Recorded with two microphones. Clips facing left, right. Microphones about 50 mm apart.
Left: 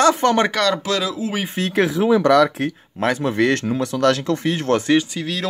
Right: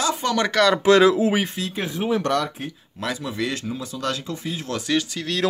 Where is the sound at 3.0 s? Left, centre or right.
Left.